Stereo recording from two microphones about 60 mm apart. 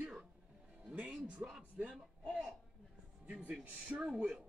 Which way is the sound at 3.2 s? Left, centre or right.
Right.